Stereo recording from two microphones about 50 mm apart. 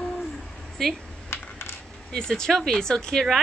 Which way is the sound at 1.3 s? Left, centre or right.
Left.